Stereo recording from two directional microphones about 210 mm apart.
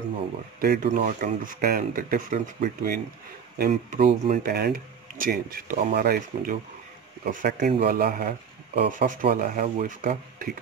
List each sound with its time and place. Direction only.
0.6 s speech: 40° right (ahead or behind)